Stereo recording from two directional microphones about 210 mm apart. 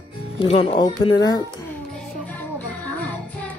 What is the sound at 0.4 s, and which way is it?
Speech, 25° left (ahead or behind).